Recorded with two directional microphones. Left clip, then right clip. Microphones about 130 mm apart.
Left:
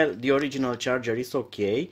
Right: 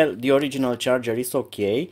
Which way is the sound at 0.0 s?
40° right (ahead or behind).